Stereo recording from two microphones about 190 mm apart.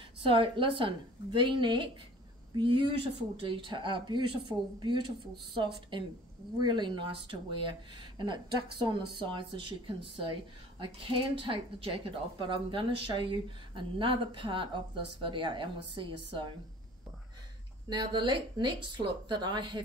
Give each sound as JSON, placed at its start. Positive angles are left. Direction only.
{"t": 0.3, "sound": "a woman's voice", "side_deg": -25}
{"t": 17.8, "sound": "a woman's voice", "side_deg": -25}